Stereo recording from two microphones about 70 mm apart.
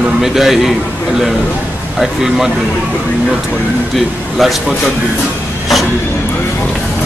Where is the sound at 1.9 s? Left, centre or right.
Centre.